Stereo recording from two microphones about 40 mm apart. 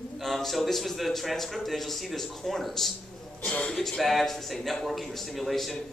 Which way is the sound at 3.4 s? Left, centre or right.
Left.